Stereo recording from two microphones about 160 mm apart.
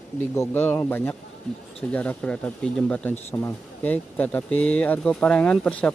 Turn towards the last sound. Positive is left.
turn(degrees=10)  # may be behind; listen again after turning